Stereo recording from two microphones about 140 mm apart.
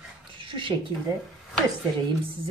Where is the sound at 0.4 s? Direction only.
35° right (ahead or behind).